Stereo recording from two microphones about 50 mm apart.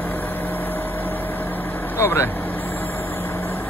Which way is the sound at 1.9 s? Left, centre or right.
Left.